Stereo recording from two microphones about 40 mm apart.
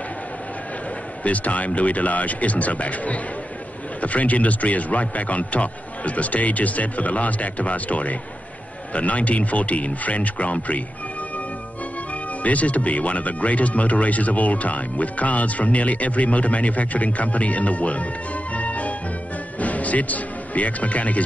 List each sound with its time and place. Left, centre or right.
1.2 s speech: left
12.4 s speech: left